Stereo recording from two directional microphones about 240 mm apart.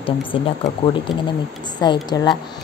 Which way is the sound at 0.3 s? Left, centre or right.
Left.